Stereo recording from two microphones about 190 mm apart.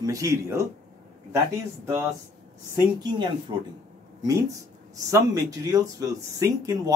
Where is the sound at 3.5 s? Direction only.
20° right (ahead or behind).